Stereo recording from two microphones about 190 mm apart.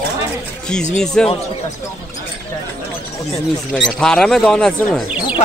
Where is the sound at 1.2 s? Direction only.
5° left (ahead or behind).